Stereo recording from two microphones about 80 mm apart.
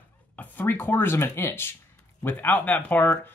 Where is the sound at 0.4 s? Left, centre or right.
Left.